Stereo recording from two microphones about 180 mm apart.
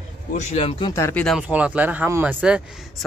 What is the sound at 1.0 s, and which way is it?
Speech, 15° left (ahead or behind).